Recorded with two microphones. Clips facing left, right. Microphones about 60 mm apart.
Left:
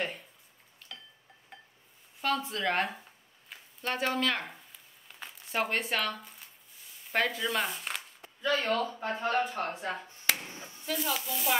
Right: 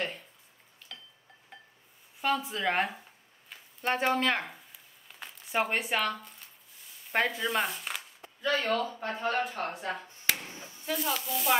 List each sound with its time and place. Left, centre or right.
2.2 s speech: centre
3.8 s speech: right
4.5 s a sound: centre
7.1 s speech: centre
7.4 s a man's voice: centre
9.8 s a sound: centre
10.9 s a man's voice: centre